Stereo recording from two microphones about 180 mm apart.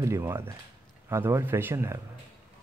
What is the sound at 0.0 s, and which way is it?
Speech, 15° right (ahead or behind).